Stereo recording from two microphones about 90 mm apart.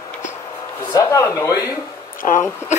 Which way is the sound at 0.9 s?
35° left (ahead or behind).